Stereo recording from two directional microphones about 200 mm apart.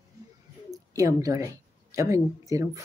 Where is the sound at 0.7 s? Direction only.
15° right (ahead or behind).